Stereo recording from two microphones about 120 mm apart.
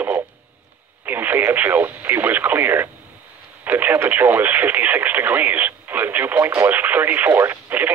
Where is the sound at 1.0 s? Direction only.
15° right (ahead or behind).